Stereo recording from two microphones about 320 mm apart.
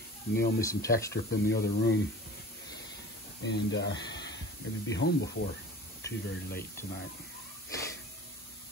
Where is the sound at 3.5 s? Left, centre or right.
Left.